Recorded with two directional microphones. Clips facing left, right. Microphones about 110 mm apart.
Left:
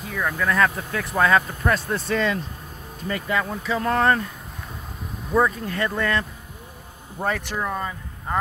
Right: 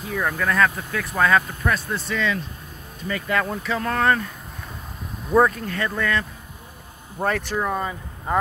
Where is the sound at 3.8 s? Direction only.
25° left (ahead or behind).